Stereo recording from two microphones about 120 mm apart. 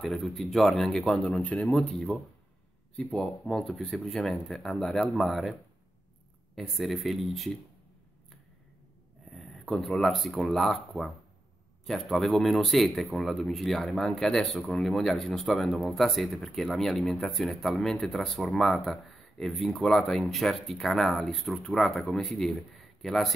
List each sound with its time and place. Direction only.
0.0 s speech: centre (ahead or behind)
9.3 s speech: centre (ahead or behind)